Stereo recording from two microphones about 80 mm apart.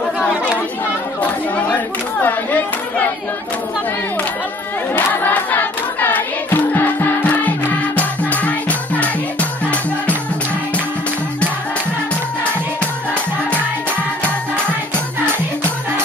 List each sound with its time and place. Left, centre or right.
4.9 s choir: left
7.2 s music: centre